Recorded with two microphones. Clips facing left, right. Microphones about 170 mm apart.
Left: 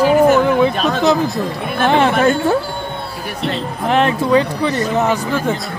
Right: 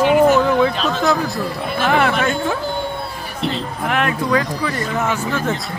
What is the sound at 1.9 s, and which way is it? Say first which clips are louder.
Speech: left 3 dB; 25° left (ahead or behind).